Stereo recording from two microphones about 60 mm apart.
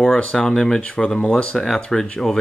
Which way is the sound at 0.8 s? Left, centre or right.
Left.